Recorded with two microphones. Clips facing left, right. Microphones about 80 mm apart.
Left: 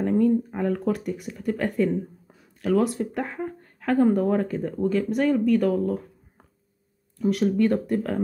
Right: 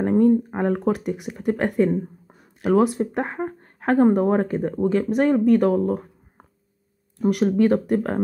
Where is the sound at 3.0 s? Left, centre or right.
Right.